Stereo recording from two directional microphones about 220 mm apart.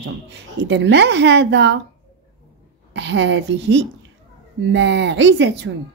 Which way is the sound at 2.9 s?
55° right (ahead or behind).